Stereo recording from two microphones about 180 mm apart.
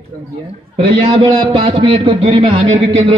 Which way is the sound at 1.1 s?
30° right (ahead or behind).